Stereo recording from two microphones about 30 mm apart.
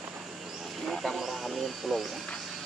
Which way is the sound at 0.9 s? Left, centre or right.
Centre.